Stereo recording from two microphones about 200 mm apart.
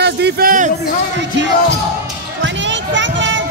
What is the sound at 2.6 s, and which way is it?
Children playing, 65° right (ahead or behind).